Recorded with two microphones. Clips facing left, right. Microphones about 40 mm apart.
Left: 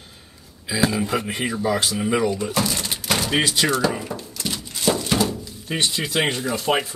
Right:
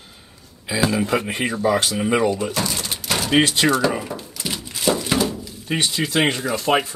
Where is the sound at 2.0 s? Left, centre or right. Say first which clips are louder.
Right 2 dB; centre.